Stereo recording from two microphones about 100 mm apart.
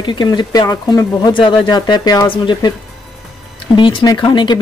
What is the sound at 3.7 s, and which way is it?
Speech, 55° left (ahead or behind).